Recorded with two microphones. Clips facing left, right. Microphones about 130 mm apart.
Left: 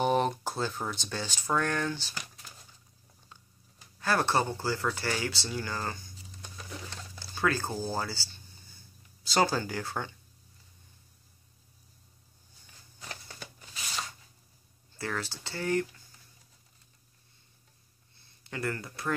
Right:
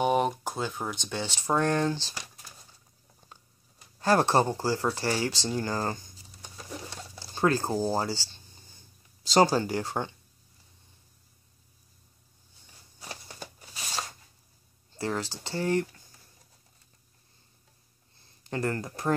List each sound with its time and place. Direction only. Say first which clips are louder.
0.0 s speech: right 2 dB; 10° right (ahead or behind); by 2.2 s 30° right (ahead or behind)
4.0 s speech: right 5 dB; 35° right (ahead or behind)
6.4 s patter: right 3 dB; 30° right (ahead or behind)
7.2 s speech: right 4 dB; 30° right (ahead or behind)
13.0 s a sound: right 2 dB; 15° right (ahead or behind)
13.4 s shuffling cards: right 2 dB; 35° right (ahead or behind)
15.0 s speech: right 4 dB; 30° right (ahead or behind)
18.1 s a sound: right 6 dB; 35° right (ahead or behind)